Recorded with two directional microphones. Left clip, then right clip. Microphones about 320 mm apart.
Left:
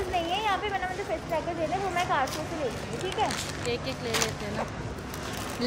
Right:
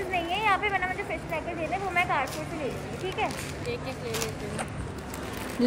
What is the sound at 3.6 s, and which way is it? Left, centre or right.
Speech, left.